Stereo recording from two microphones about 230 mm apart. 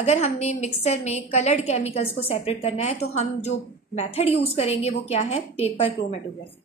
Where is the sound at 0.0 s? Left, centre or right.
Left.